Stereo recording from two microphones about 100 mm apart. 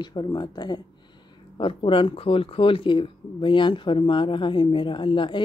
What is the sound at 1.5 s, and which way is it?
A woman's voice, 60° left (ahead or behind).